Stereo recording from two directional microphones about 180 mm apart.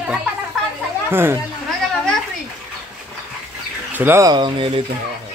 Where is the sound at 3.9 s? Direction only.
10° right (ahead or behind); by 4.8 s 30° right (ahead or behind).